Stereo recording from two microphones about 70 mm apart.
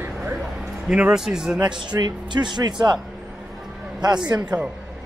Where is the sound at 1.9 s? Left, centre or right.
Right.